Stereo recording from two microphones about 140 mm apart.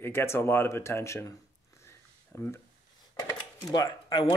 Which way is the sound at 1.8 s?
15° left (ahead or behind).